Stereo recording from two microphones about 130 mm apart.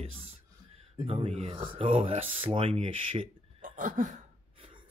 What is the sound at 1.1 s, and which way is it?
Speech, 50° right (ahead or behind).